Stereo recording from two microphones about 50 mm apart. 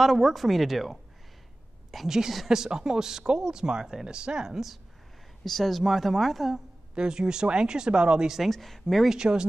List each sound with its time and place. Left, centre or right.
0.0 s speech: centre
5.4 s speech: centre
7.0 s speech: centre
8.5 s speech: centre
9.1 s speech: centre